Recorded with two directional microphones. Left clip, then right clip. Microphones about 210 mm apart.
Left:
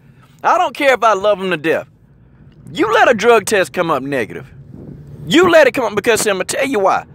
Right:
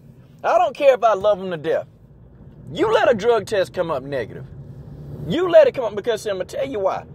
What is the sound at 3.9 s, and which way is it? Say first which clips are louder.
Speech: left 6 dB; 65° left (ahead or behind).